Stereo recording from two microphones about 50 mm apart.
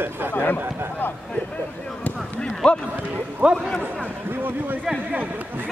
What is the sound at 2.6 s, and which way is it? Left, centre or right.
Speech, left.